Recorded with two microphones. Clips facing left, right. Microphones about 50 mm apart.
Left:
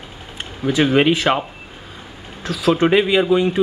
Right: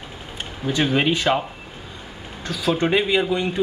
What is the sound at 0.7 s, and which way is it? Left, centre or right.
Speech, centre.